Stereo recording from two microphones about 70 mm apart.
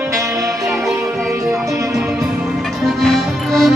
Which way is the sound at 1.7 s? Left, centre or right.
Right.